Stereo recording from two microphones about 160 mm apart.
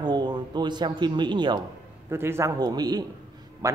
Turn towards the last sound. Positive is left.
turn(degrees=-20)  # may be behind; listen again after turning